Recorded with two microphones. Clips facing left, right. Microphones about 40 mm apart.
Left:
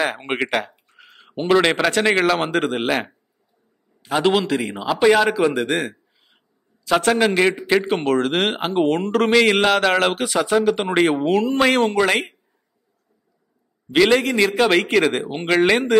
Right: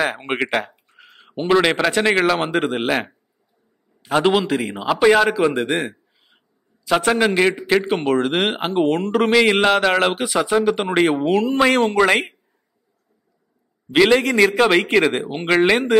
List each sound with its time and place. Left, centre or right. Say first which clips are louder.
0.0 s speech: right 1 dB; centre
0.8 s a sound: even; centre
2.0 s speech: even; centre
4.2 s a man's voice: even; centre
5.0 s a sound: right 1 dB; centre
7.1 s a man's voice: even; centre
10.8 s speech: even; centre
11.9 s speech: right 2 dB; centre
13.8 s a man's voice: right 1 dB; centre
15.5 s a man's voice: right 1 dB; centre